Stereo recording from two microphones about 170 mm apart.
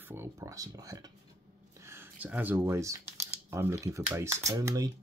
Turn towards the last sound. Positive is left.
turn(degrees=-20)  # may be behind; listen again after turning